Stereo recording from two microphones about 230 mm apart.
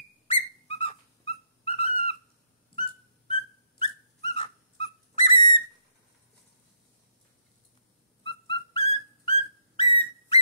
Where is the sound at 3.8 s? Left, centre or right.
Left.